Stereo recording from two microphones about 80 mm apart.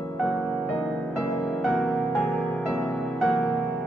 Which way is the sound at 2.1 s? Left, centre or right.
Left.